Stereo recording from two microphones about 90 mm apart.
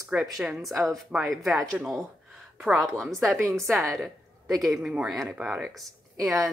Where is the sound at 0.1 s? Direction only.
5° right (ahead or behind).